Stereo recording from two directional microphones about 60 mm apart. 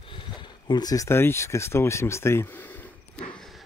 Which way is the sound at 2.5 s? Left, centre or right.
Left.